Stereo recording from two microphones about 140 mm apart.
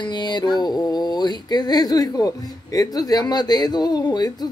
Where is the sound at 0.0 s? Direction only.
30° left (ahead or behind).